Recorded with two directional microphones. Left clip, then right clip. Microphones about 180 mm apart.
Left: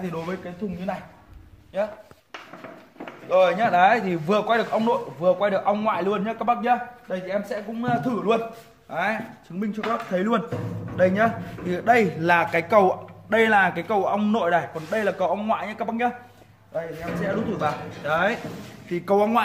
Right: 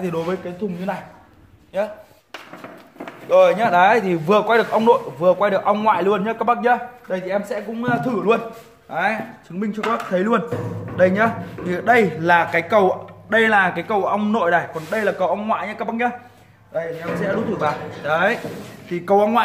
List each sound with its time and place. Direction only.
0.0 s a man's voice: 35° right (ahead or behind)
3.1 s a man's voice: 40° right (ahead or behind); by 8.4 s 15° right (ahead or behind)
8.9 s a man's voice: centre (ahead or behind)
16.7 s a man's voice: centre (ahead or behind)
18.9 s speech: 20° left (ahead or behind)